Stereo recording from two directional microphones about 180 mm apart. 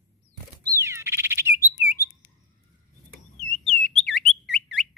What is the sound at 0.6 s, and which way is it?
Bird, 15° right (ahead or behind).